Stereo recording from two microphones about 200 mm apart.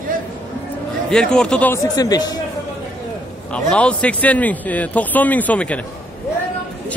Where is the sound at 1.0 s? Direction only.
5° left (ahead or behind); by 2.3 s 20° left (ahead or behind).